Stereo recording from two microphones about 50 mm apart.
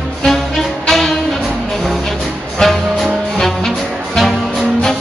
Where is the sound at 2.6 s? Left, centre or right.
Centre.